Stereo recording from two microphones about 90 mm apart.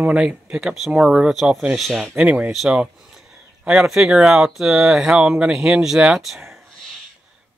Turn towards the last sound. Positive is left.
turn(degrees=0)  # may be behind; listen again after turning